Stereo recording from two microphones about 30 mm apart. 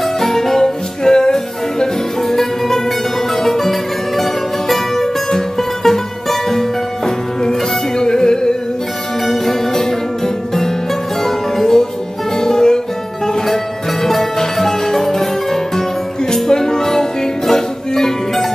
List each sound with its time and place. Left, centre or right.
0.0 s music: centre
9.2 s music: centre
14.0 s music: centre